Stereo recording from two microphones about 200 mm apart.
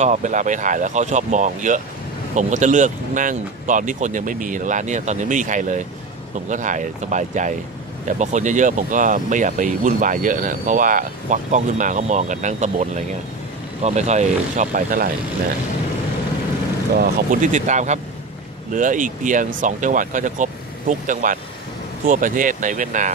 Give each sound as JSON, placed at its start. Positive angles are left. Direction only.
{"t": 0.0, "sound": "speech", "side_deg": -35}
{"t": 16.9, "sound": "speech", "side_deg": -45}